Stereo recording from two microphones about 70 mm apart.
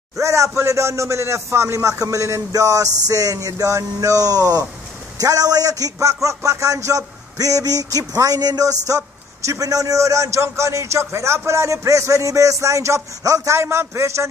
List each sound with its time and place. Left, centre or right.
0.2 s a man's voice: right